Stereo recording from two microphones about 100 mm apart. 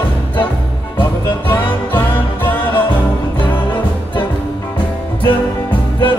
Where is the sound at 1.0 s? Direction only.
20° left (ahead or behind).